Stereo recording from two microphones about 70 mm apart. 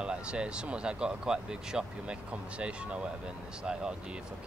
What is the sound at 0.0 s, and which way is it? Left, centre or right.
Speech, centre.